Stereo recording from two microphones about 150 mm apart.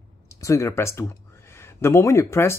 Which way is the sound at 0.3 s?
20° left (ahead or behind).